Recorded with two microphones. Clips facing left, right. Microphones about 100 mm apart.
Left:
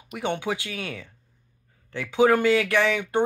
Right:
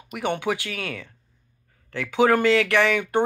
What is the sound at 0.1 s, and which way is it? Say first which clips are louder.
Speech: right 2 dB; 15° left (ahead or behind).